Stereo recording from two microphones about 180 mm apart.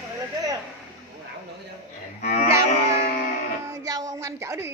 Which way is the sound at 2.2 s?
45° left (ahead or behind).